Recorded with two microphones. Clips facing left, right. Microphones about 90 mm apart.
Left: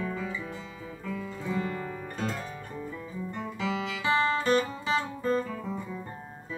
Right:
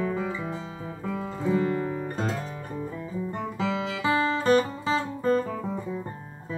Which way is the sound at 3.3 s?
35° right (ahead or behind).